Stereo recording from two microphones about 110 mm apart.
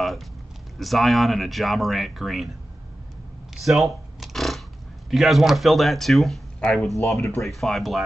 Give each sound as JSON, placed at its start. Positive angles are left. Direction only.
{"t": 0.7, "sound": "speech", "side_deg": 0}
{"t": 3.5, "sound": "a sound", "side_deg": 0}
{"t": 5.1, "sound": "speech", "side_deg": 0}
{"t": 7.2, "sound": "speech", "side_deg": 25}
{"t": 7.4, "sound": "speech", "side_deg": 0}